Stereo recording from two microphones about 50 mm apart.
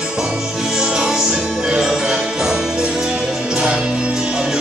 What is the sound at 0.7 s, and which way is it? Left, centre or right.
Music, centre.